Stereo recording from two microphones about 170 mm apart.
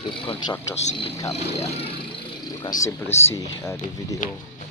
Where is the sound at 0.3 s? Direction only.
35° left (ahead or behind).